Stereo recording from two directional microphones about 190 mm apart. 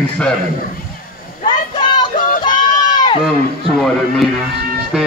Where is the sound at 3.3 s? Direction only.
Centre (ahead or behind).